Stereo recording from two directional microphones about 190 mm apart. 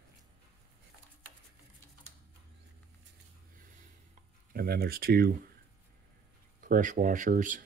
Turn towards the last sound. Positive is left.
turn(degrees=-45)  # may be behind; listen again after turning